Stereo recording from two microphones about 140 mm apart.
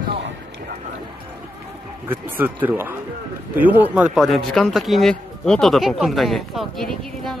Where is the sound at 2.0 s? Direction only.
15° right (ahead or behind).